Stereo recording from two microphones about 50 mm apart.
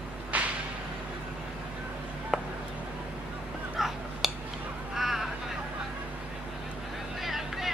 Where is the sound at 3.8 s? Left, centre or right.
Centre.